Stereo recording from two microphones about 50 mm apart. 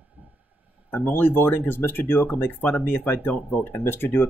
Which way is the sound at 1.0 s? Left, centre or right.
Left.